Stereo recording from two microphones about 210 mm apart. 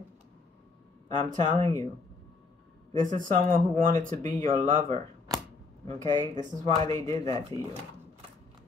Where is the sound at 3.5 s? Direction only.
40° right (ahead or behind).